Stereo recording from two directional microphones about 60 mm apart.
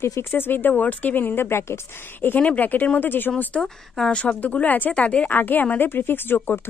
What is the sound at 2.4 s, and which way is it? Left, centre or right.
Speech, left.